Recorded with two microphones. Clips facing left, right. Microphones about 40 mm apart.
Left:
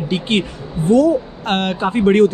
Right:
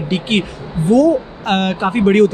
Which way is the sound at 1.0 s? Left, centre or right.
Right.